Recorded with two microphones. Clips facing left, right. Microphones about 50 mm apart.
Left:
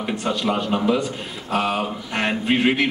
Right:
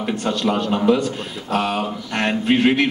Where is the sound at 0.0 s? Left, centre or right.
Centre.